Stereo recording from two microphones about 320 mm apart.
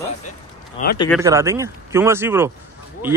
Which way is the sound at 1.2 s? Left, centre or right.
Centre.